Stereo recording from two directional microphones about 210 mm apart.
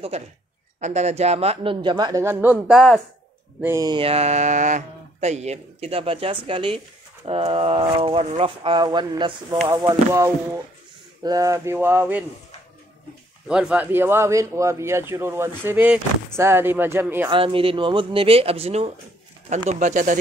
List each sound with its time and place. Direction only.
0.1 s speech: 30° right (ahead or behind); by 3.0 s centre (ahead or behind)
3.6 s speech: 15° right (ahead or behind)
13.5 s speech: 5° right (ahead or behind)
17.3 s speech: 25° right (ahead or behind)